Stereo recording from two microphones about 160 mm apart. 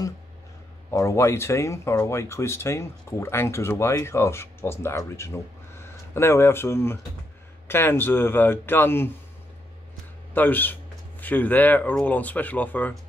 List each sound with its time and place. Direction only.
0.9 s speech: 20° left (ahead or behind)
10.3 s speech: 10° left (ahead or behind)